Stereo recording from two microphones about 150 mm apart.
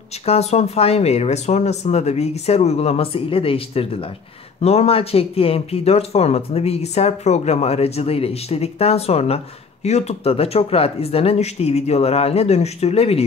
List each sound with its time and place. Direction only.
0.2 s speech: 45° left (ahead or behind)